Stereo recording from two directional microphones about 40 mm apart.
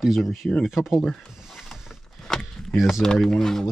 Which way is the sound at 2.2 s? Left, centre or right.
Centre.